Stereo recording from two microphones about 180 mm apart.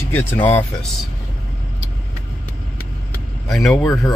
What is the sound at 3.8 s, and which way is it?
Speech, 20° left (ahead or behind).